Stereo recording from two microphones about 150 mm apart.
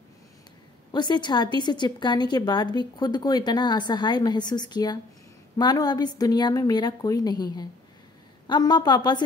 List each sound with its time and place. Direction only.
0.9 s a woman's voice: 30° left (ahead or behind)